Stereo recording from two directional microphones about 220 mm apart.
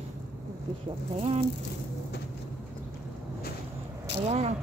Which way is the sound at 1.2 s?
25° right (ahead or behind).